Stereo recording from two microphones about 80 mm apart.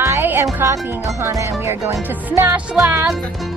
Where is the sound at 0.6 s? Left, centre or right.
Right.